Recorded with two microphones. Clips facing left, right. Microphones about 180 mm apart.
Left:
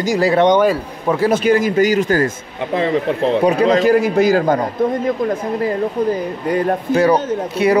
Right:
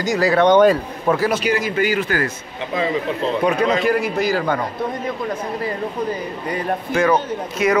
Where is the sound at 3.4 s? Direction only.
35° left (ahead or behind).